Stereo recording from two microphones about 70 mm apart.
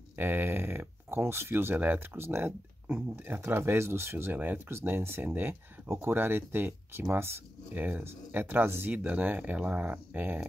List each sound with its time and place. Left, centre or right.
0.1 s speech: right
5.9 s speech: right
7.8 s speech: right